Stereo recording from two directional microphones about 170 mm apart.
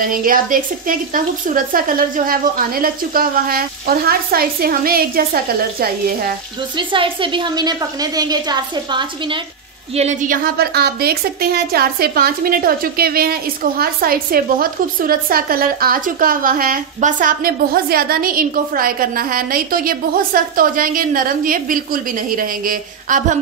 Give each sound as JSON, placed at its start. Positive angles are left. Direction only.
{"t": 0.0, "sound": "a woman's voice", "side_deg": -55}
{"t": 6.8, "sound": "a woman's voice", "side_deg": -30}
{"t": 9.9, "sound": "a woman's voice", "side_deg": -45}